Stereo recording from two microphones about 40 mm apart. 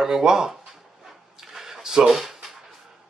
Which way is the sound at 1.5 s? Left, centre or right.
Centre.